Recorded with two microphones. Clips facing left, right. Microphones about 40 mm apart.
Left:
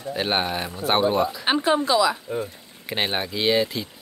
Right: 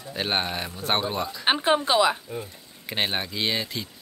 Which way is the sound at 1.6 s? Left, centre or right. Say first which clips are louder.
Left 1 dB; right.